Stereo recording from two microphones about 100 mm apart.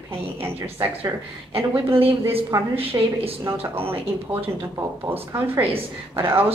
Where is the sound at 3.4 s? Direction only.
25° right (ahead or behind).